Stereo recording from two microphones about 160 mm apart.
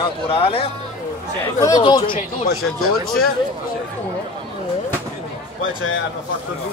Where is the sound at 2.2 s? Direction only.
55° left (ahead or behind).